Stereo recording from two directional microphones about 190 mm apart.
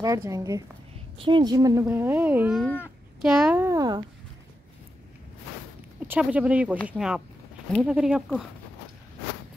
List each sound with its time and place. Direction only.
0.0 s a woman's voice: 15° right (ahead or behind)
2.6 s speech: 10° left (ahead or behind)
3.2 s speech: centre (ahead or behind)
3.6 s a woman's voice: 20° right (ahead or behind)
5.9 s speech: 10° right (ahead or behind)